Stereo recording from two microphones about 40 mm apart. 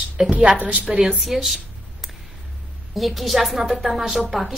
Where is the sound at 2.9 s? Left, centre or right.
Centre.